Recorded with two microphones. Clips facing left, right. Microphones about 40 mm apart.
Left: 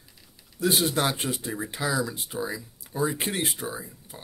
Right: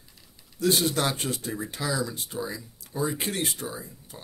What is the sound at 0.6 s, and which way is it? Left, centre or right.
Speech, centre.